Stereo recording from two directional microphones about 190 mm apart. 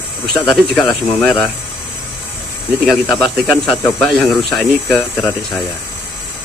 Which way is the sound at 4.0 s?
Centre (ahead or behind).